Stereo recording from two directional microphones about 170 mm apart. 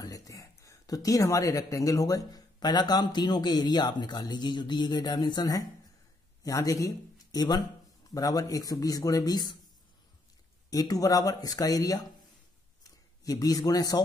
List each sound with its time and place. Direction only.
0.0 s speech: 20° left (ahead or behind)
10.7 s a man's voice: 20° left (ahead or behind)